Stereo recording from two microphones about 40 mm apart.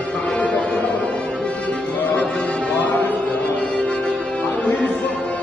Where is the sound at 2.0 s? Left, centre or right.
Left.